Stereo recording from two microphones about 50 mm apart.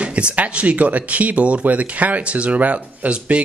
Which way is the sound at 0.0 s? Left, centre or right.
Right.